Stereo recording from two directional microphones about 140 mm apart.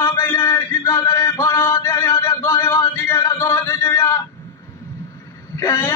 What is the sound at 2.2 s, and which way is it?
A man's voice, 20° left (ahead or behind).